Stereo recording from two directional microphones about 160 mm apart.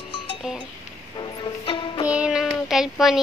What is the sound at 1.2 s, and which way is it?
Music, 30° left (ahead or behind).